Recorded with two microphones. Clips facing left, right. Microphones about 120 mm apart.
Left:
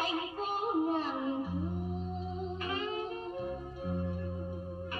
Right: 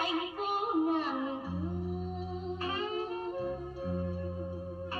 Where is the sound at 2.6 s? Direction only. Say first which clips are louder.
Right 2 dB; 35° right (ahead or behind).